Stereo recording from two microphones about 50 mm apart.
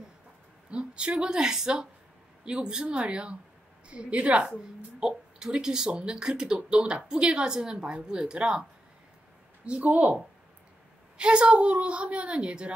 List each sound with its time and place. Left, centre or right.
0.7 s a woman's voice: right
5.0 s speech: centre
9.7 s speech: right
11.1 s a woman's voice: right